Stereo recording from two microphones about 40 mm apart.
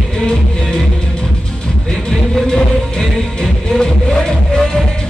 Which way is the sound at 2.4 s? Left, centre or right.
Centre.